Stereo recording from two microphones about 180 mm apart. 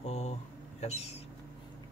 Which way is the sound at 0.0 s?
35° left (ahead or behind).